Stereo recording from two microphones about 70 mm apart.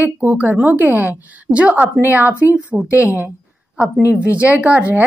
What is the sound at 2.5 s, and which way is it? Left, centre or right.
A woman's voice, centre.